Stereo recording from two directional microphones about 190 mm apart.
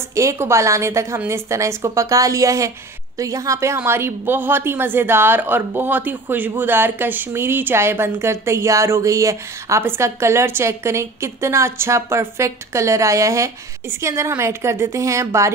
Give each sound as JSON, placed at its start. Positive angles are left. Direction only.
{"t": 0.1, "sound": "a woman's voice", "side_deg": -15}